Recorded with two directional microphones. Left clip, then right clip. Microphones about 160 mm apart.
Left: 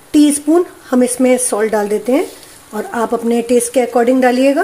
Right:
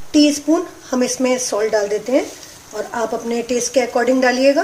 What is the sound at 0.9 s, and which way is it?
Speech, 75° left (ahead or behind).